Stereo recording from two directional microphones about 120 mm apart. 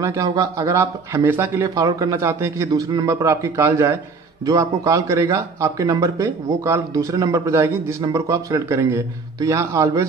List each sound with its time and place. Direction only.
0.0 s speech: 25° right (ahead or behind)
1.8 s speech: 30° right (ahead or behind)